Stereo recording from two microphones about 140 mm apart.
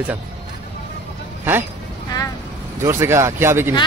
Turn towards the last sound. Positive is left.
turn(degrees=-15)  # may be behind; listen again after turning